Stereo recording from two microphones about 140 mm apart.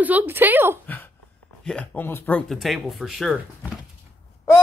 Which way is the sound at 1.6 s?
5° left (ahead or behind).